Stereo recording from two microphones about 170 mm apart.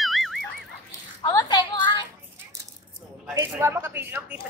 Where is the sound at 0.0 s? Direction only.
Centre (ahead or behind).